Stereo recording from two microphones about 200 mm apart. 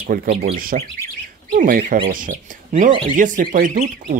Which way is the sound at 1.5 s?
45° right (ahead or behind).